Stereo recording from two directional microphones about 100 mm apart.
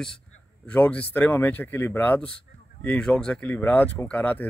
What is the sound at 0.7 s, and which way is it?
Speech, 15° left (ahead or behind).